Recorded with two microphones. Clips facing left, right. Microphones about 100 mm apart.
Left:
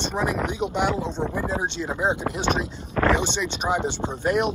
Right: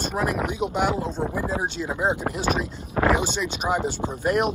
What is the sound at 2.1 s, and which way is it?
Speech, 40° right (ahead or behind).